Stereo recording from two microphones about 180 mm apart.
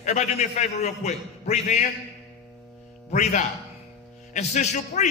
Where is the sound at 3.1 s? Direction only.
45° left (ahead or behind).